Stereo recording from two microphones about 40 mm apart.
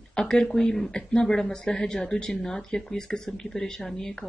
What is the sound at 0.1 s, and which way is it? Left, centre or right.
Speech, centre.